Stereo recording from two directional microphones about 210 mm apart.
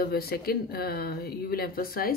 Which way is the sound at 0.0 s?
45° left (ahead or behind).